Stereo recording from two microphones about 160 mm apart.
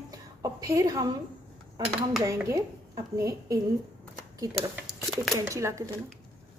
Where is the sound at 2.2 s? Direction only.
20° right (ahead or behind).